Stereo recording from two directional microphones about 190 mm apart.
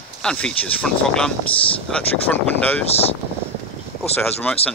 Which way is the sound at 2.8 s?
35° left (ahead or behind).